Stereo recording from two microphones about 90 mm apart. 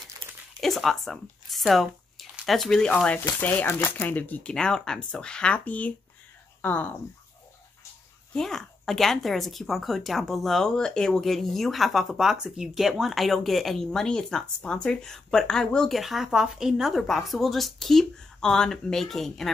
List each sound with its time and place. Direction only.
0.6 s speech: centre (ahead or behind)
3.3 s speech: 20° left (ahead or behind)
8.4 s speech: 5° left (ahead or behind)